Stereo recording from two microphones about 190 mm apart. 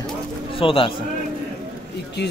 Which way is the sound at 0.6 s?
30° left (ahead or behind).